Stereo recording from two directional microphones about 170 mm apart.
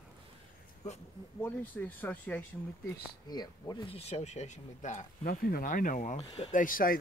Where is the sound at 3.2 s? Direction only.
25° left (ahead or behind); by 5.4 s 45° left (ahead or behind).